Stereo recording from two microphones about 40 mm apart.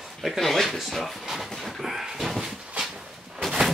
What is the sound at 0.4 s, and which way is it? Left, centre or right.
Speech, centre.